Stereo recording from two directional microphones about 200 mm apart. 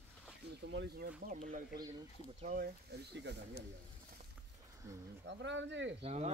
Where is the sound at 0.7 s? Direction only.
50° right (ahead or behind).